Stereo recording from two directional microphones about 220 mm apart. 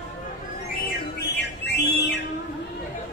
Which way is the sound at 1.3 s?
50° left (ahead or behind).